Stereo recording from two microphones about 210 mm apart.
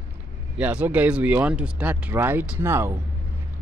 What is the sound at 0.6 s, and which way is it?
Speech, 5° right (ahead or behind).